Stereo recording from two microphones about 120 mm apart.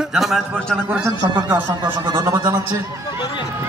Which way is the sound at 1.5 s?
15° right (ahead or behind).